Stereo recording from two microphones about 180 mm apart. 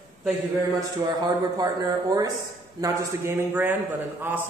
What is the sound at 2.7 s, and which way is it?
A man's voice, 15° right (ahead or behind).